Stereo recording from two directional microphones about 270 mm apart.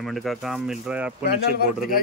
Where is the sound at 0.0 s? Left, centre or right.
Centre.